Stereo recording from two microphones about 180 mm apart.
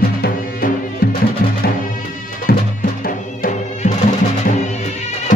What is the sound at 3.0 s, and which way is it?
Music, 45° left (ahead or behind).